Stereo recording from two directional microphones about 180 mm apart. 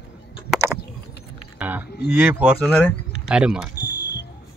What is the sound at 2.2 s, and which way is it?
Speech, 10° right (ahead or behind).